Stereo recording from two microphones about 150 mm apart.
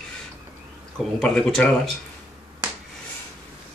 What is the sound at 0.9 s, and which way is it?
Speech, 5° left (ahead or behind).